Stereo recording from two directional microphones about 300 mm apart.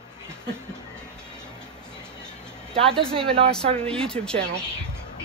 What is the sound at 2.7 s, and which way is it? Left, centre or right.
Speech, centre.